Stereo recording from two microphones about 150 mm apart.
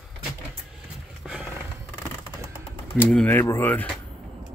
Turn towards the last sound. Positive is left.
turn(degrees=10)  # may be behind; listen again after turning